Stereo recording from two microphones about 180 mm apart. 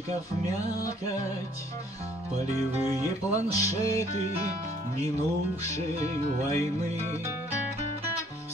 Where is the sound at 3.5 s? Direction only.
15° left (ahead or behind).